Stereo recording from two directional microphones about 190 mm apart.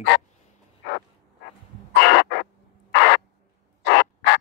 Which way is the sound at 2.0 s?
65° left (ahead or behind).